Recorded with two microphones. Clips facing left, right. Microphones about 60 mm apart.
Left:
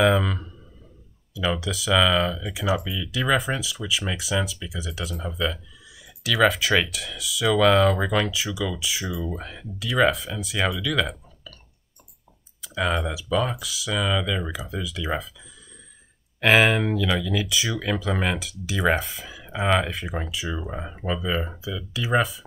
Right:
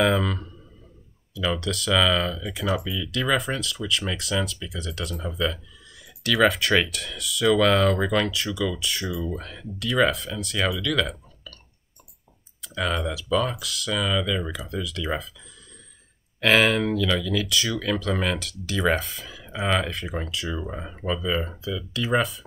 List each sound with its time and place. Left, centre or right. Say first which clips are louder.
0.0 s speech: left 2 dB; centre
12.6 s speech: left 1 dB; centre
16.3 s speech: left 1 dB; centre